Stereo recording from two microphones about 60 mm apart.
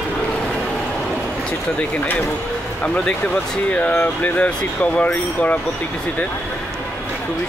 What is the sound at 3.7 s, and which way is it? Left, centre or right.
Speech, left.